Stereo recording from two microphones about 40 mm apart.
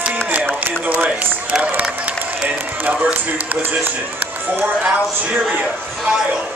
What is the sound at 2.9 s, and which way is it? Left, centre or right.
Speech, right.